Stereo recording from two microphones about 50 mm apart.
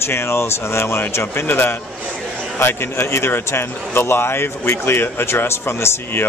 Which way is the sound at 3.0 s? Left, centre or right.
Left.